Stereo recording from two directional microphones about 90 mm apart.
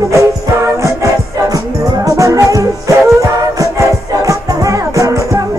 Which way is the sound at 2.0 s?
35° right (ahead or behind).